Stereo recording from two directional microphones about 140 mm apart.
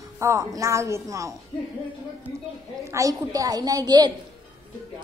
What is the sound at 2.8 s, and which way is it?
A child's voice, 20° right (ahead or behind).